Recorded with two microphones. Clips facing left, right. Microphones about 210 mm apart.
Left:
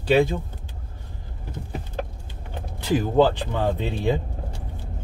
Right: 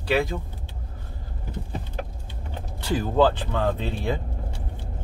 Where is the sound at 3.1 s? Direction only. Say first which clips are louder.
Even; 15° left (ahead or behind).